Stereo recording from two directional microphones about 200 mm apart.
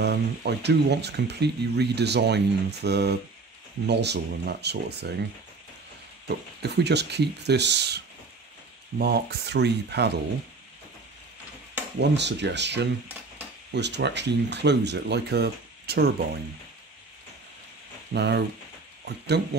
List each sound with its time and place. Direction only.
0.0 s speech: 55° right (ahead or behind)
6.2 s speech: 55° right (ahead or behind)
12.0 s speech: 60° right (ahead or behind)
18.1 s speech: 55° right (ahead or behind)